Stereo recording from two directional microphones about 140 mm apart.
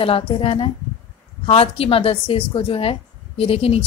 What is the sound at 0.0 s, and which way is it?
A woman's voice, 40° left (ahead or behind).